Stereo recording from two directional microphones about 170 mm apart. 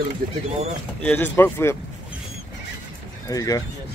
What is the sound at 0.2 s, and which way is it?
Speech, 60° right (ahead or behind).